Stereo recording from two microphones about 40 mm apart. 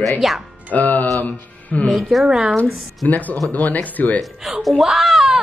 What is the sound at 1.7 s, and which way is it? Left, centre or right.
Speech, left.